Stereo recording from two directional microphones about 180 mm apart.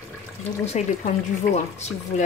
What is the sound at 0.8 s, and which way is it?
Speech, 40° left (ahead or behind).